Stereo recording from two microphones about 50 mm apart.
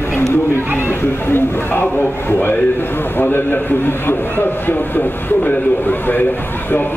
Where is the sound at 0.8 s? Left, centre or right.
Left.